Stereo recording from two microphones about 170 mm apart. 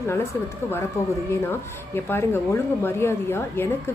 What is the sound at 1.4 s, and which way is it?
A woman's voice, 15° left (ahead or behind).